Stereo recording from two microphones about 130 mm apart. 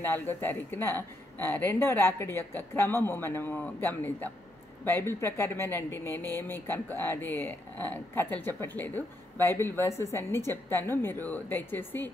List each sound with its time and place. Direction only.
0.0 s speech: 15° left (ahead or behind)